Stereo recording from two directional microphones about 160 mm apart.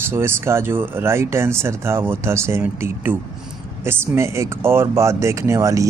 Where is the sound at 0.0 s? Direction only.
15° right (ahead or behind).